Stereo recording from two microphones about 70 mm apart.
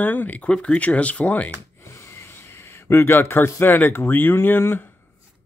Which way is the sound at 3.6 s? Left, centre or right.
Left.